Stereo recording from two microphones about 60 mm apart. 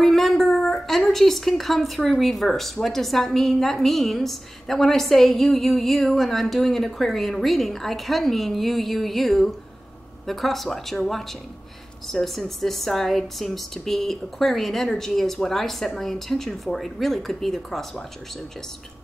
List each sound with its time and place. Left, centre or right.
0.0 s a woman's voice: centre